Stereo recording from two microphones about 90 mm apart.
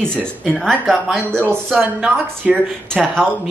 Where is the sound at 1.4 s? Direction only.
20° right (ahead or behind).